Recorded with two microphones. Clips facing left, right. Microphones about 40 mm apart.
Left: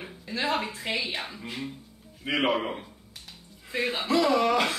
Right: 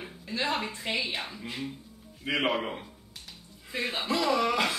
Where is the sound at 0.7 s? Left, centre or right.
Centre.